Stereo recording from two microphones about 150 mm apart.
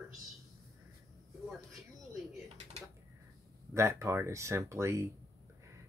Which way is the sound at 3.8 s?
20° right (ahead or behind).